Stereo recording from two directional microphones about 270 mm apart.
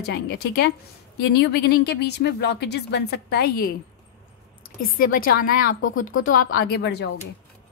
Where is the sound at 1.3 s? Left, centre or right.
Left.